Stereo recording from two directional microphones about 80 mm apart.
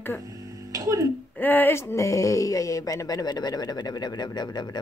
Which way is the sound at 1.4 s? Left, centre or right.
Left.